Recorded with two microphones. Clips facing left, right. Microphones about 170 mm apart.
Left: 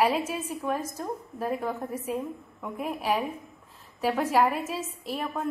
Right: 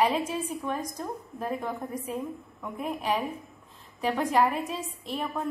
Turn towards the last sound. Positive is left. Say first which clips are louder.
# even
turn(degrees=5)  # may be behind; listen again after turning